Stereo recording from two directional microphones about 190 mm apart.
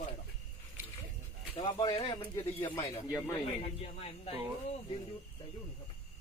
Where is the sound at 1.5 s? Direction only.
25° left (ahead or behind).